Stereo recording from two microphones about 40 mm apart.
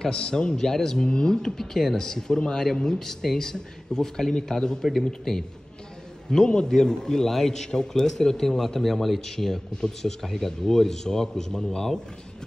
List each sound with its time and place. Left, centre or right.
0.0 s speech: centre